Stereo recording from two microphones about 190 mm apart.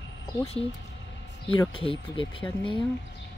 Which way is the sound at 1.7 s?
30° left (ahead or behind).